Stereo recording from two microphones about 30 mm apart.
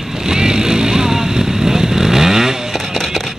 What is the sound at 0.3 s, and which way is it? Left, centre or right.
Vehicle, right.